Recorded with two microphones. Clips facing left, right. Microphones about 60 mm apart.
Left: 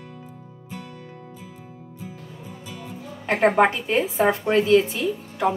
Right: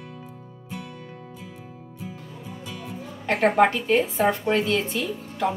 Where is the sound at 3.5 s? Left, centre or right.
Left.